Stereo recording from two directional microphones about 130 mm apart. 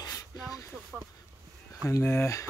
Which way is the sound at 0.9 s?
5° right (ahead or behind).